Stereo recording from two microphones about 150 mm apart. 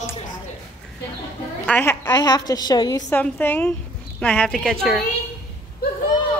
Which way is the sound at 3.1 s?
10° left (ahead or behind).